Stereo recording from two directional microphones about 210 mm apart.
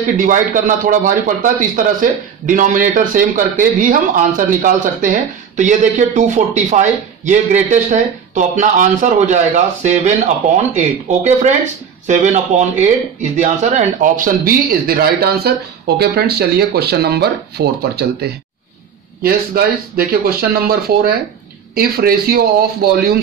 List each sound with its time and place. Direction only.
0.2 s a man's voice: 40° right (ahead or behind)